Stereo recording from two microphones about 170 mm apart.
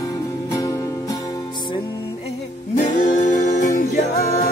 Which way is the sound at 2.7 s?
45° left (ahead or behind).